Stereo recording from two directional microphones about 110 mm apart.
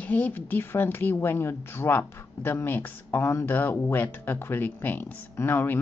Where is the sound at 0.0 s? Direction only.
15° left (ahead or behind).